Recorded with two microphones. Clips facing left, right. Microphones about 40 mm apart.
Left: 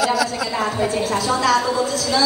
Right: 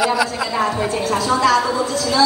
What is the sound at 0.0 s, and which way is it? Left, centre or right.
Speech, right.